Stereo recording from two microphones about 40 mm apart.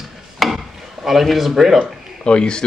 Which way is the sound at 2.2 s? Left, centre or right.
Left.